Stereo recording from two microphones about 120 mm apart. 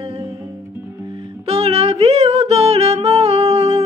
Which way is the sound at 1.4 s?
55° right (ahead or behind).